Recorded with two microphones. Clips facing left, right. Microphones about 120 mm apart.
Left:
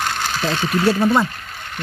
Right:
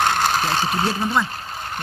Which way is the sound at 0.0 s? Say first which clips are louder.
Right 3 dB; 50° right (ahead or behind).